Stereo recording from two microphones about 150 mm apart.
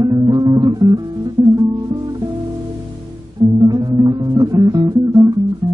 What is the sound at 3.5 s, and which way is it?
Music, 25° right (ahead or behind).